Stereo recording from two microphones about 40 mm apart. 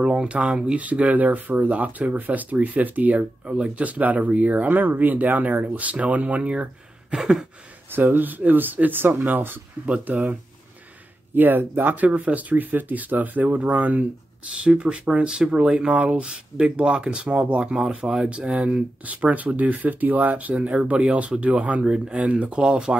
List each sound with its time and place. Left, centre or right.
0.0 s speech: right
0.7 s speech: right
4.6 s speech: right
7.2 s a sound: centre
7.9 s speech: right
11.3 s speech: right
14.6 s speech: right
21.8 s speech: right